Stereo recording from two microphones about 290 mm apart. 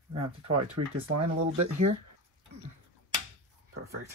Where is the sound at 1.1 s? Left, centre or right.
Right.